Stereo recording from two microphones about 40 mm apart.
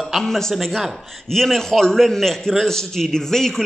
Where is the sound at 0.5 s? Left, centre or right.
Centre.